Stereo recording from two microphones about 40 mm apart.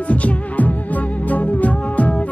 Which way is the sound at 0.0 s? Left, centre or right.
Left.